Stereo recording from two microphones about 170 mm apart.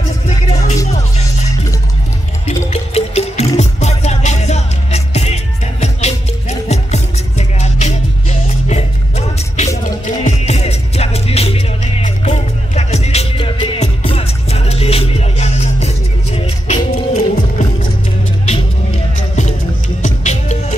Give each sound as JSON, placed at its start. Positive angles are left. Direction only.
{"t": 0.5, "sound": "music", "side_deg": 45}
{"t": 2.7, "sound": "music", "side_deg": 40}
{"t": 16.9, "sound": "music", "side_deg": 60}
{"t": 19.1, "sound": "music", "side_deg": 45}